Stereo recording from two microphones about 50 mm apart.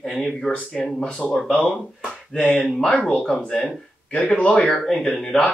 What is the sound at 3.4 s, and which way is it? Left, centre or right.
A man's voice, centre.